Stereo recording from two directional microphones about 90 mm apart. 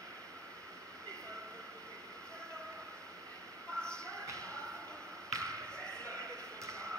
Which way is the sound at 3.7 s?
10° left (ahead or behind).